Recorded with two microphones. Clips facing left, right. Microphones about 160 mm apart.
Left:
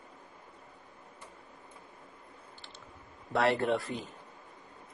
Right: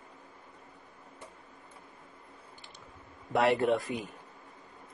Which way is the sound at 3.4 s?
Centre (ahead or behind).